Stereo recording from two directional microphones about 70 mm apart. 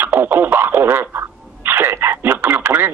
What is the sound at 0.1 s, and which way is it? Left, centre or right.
Speech, right.